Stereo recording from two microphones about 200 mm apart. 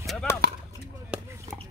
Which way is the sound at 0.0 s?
Centre (ahead or behind).